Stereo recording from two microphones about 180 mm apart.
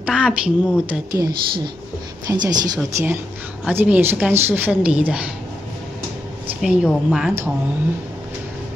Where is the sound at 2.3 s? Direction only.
20° right (ahead or behind).